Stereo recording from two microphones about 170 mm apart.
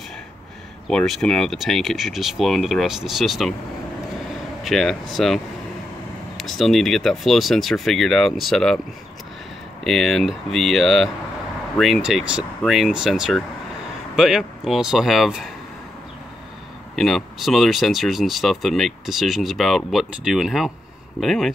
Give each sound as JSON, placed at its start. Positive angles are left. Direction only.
{"t": 0.8, "sound": "speech", "side_deg": 5}
{"t": 4.6, "sound": "speech", "side_deg": 0}
{"t": 9.8, "sound": "speech", "side_deg": 0}
{"t": 16.9, "sound": "speech", "side_deg": 0}